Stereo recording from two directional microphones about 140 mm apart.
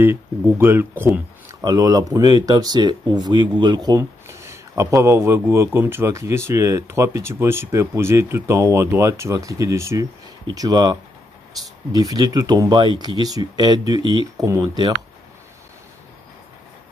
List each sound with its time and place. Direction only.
0.0 s speech: 15° right (ahead or behind)
1.6 s speech: 30° right (ahead or behind)